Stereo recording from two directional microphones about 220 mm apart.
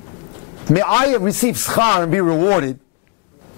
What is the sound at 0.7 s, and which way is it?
Speech, 15° left (ahead or behind).